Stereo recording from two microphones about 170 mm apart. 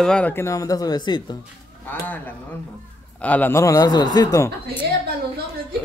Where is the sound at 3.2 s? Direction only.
10° left (ahead or behind).